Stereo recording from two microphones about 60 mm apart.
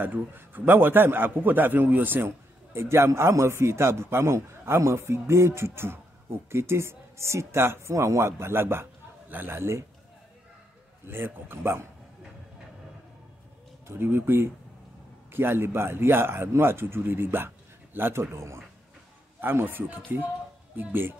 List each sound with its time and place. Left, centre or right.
0.0 s a man's voice: right
2.2 s a man's voice: right
7.9 s a man's voice: right
11.1 s a man's voice: right
13.8 s a man's voice: right
19.4 s a man's voice: right